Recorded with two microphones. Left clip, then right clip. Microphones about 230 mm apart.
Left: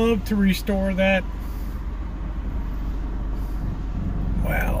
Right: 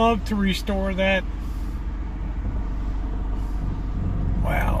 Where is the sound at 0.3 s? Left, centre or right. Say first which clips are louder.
Left 2 dB; left.